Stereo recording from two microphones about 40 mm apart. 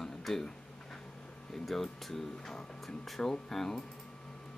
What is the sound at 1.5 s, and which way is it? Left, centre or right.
Speech, centre.